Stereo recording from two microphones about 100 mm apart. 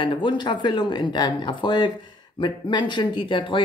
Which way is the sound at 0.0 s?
50° left (ahead or behind).